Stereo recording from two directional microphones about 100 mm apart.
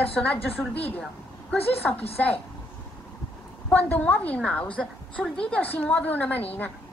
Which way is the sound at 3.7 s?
15° left (ahead or behind).